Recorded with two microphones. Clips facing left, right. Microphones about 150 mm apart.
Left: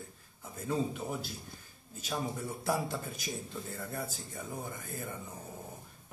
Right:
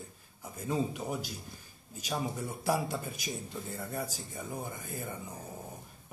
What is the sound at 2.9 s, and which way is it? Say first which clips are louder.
A man's voice: right 1 dB; 20° right (ahead or behind).